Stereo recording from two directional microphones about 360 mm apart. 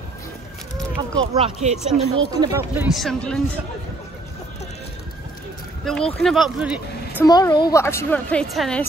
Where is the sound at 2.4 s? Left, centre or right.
Centre.